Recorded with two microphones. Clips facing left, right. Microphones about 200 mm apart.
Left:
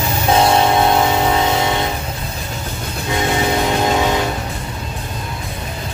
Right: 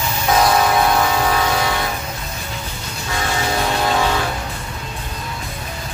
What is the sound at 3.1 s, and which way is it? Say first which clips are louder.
Vehicle: left 4 dB; 20° left (ahead or behind).